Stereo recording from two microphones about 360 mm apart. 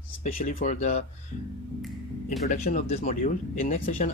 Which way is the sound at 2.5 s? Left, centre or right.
Left.